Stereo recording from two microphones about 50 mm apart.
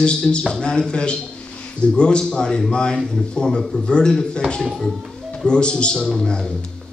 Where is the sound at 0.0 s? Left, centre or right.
Centre.